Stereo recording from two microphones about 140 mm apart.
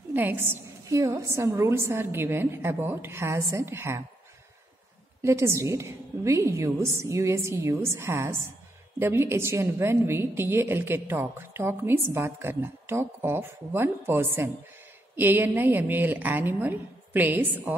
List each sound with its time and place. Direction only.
0.1 s a woman's voice: 15° right (ahead or behind)
5.2 s a woman's voice: 20° right (ahead or behind)